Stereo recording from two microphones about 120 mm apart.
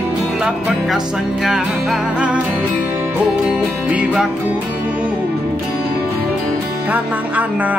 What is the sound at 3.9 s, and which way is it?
Music, 10° right (ahead or behind).